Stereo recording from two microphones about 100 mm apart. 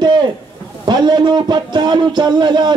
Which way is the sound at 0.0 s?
50° right (ahead or behind).